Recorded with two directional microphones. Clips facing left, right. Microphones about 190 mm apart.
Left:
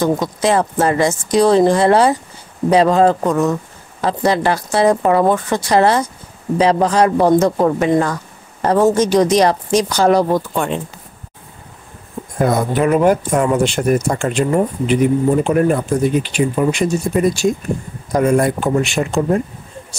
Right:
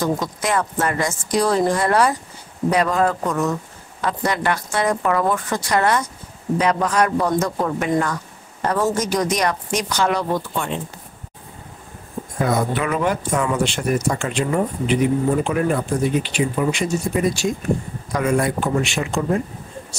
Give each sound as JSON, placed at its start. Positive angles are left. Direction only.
{"t": 0.0, "sound": "speech", "side_deg": 30}
{"t": 12.4, "sound": "speech", "side_deg": 45}